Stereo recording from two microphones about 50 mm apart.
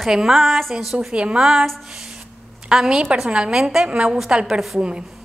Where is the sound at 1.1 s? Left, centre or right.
Centre.